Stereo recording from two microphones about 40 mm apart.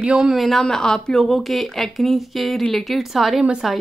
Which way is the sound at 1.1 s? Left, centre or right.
Centre.